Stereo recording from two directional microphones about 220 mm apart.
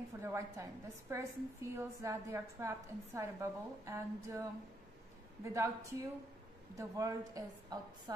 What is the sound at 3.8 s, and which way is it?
A woman's voice, 15° right (ahead or behind).